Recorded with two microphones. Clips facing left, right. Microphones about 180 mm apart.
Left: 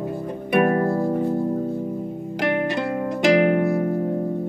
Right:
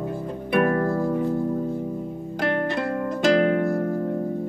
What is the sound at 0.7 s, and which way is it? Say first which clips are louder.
Harp: left 2 dB; 25° left (ahead or behind).